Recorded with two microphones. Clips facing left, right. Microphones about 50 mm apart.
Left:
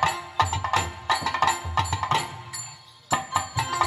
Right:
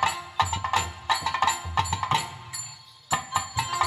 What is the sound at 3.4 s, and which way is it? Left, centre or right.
Music, centre.